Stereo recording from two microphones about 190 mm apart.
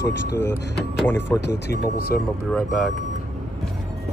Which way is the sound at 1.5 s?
60° left (ahead or behind).